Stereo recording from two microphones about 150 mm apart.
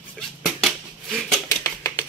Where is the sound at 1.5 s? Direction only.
20° left (ahead or behind).